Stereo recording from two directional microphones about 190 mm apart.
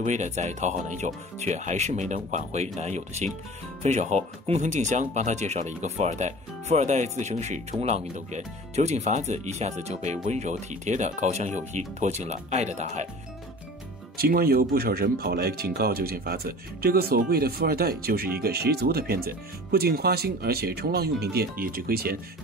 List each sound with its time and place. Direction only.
0.0 s speech: 40° right (ahead or behind)
14.1 s speech: 50° right (ahead or behind)